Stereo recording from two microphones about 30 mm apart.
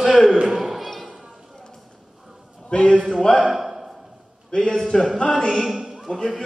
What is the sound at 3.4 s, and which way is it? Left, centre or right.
Speech, centre.